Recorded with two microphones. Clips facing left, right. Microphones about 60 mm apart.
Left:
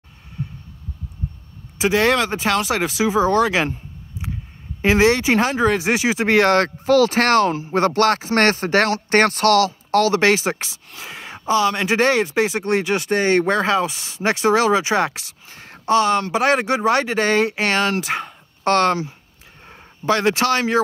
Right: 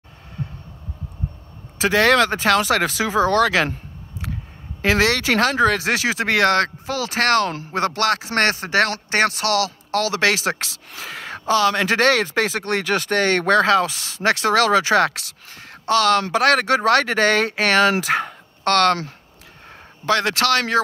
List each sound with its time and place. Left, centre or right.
1.8 s speech: centre
4.8 s speech: left
6.9 s speech: left
11.1 s speech: centre
15.2 s a sound: left
16.3 s speech: centre
18.6 s speech: centre
20.1 s speech: left